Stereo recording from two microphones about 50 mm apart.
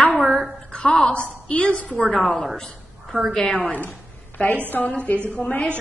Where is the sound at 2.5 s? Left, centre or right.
Centre.